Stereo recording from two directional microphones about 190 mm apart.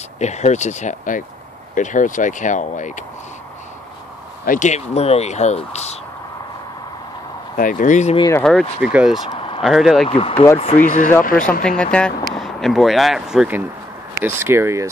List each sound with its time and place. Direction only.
0.2 s speech: 35° left (ahead or behind)
4.5 s speech: 40° left (ahead or behind)
7.5 s speech: 45° left (ahead or behind)
8.4 s speech: 5° left (ahead or behind)
9.3 s vehicle: 30° left (ahead or behind)
9.6 s speech: centre (ahead or behind)
10.0 s speech: 30° left (ahead or behind)
10.3 s speech: 15° left (ahead or behind)
10.8 s speech: 40° left (ahead or behind)
11.6 s speech: 5° left (ahead or behind); by 14.9 s 15° right (ahead or behind)